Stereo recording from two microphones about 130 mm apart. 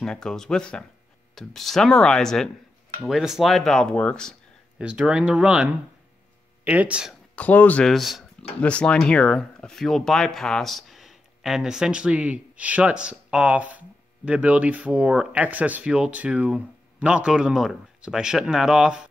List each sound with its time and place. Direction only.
0.0 s speech: 5° left (ahead or behind)
4.7 s speech: 5° right (ahead or behind)
7.3 s speech: 10° left (ahead or behind)
7.9 s speech: centre (ahead or behind)